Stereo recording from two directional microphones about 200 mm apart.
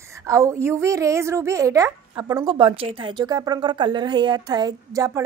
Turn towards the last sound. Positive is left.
turn(degrees=-15)  # may be behind; listen again after turning